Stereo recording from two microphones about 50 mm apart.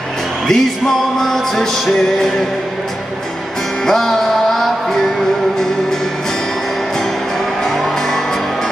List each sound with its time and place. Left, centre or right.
0.5 s music: centre
3.8 s music: centre
7.6 s music: centre